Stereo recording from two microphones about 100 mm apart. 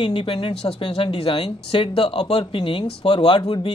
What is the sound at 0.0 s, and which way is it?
Speech, 65° left (ahead or behind).